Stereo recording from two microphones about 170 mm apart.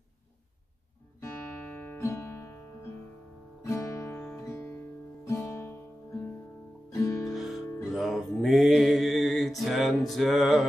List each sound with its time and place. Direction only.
1.2 s guitar: 15° left (ahead or behind)
3.6 s guitar: 15° left (ahead or behind)
5.3 s music: 15° left (ahead or behind)
6.9 s music: 20° left (ahead or behind)
7.3 s music: centre (ahead or behind)